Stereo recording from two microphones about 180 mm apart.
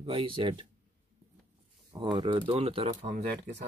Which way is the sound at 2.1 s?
25° right (ahead or behind).